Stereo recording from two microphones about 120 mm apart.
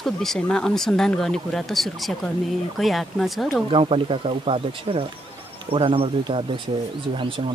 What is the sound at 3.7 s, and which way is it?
Speech, 50° right (ahead or behind).